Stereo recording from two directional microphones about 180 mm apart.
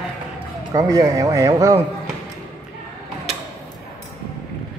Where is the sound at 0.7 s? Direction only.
20° right (ahead or behind).